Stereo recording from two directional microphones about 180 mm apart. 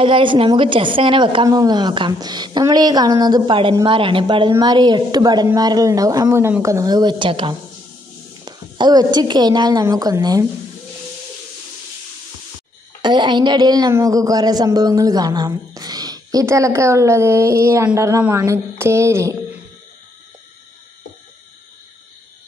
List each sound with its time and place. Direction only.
0.0 s a woman's voice: 30° right (ahead or behind)
13.0 s a woman's voice: 25° right (ahead or behind)